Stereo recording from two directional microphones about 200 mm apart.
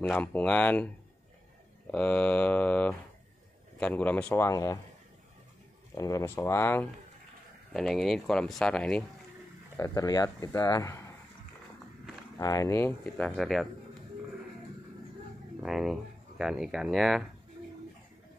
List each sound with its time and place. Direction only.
0.0 s speech: 5° left (ahead or behind)
1.9 s speech: 5° left (ahead or behind)
5.9 s speech: 15° left (ahead or behind)
7.7 s speech: centre (ahead or behind)
9.8 s speech: 15° left (ahead or behind)
12.4 s speech: 15° left (ahead or behind)
15.6 s speech: centre (ahead or behind)